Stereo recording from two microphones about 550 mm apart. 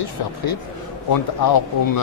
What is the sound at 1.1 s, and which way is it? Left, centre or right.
Speech, left.